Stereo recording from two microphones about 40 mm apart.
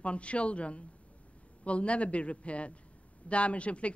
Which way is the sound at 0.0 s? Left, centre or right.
Left.